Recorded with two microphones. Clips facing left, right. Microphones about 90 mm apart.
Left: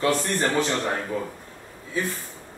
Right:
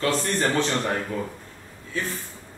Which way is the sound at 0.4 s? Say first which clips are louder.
Even; 5° left (ahead or behind).